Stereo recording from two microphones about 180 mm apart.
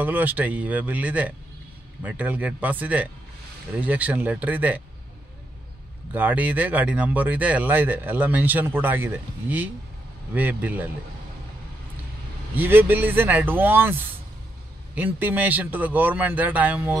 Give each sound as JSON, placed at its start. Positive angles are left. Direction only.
{"t": 0.0, "sound": "speech", "side_deg": -10}
{"t": 6.1, "sound": "speech", "side_deg": -10}
{"t": 12.5, "sound": "speech", "side_deg": -10}
{"t": 15.0, "sound": "speech", "side_deg": -10}